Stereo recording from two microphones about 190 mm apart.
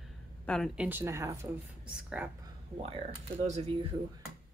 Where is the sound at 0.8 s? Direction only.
10° right (ahead or behind).